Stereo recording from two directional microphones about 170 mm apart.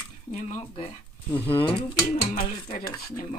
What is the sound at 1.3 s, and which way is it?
Speech, 10° left (ahead or behind).